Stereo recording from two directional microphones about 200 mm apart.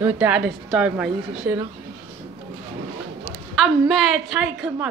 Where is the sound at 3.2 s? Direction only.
Centre (ahead or behind).